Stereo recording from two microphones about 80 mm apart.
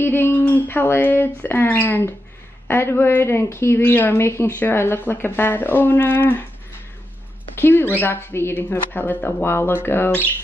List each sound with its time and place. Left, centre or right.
0.0 s a woman's voice: left
7.5 s a woman's voice: left